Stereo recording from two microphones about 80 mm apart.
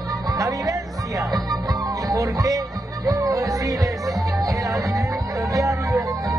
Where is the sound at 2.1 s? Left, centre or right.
Right.